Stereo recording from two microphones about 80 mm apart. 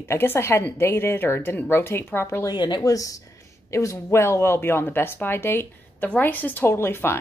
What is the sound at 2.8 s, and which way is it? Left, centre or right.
A woman's voice, left.